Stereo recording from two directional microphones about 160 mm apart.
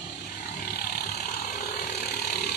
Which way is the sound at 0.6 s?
75° left (ahead or behind).